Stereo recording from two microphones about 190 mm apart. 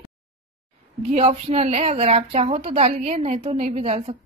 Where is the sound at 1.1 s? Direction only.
30° right (ahead or behind).